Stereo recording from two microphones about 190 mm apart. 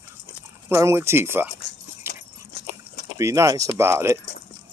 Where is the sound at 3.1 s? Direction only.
15° right (ahead or behind).